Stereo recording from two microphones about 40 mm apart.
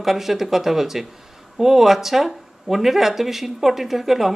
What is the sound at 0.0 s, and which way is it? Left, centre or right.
Speech, centre.